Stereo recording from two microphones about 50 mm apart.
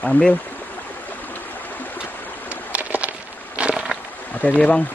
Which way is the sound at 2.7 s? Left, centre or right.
Right.